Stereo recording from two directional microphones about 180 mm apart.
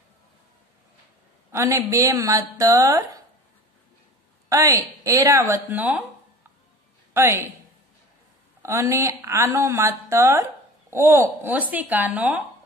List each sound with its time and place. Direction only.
1.5 s a woman's voice: 15° right (ahead or behind)
4.5 s a woman's voice: 15° right (ahead or behind)
7.2 s a woman's voice: 15° right (ahead or behind)
8.6 s a woman's voice: 15° right (ahead or behind)